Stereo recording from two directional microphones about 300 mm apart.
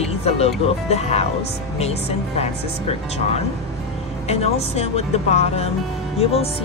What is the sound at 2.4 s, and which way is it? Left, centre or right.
Speech, left.